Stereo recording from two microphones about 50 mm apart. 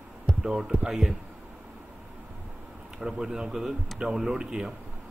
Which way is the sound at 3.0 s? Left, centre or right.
Centre.